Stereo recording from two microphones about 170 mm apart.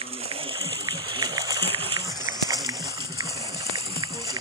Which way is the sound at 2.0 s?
20° right (ahead or behind).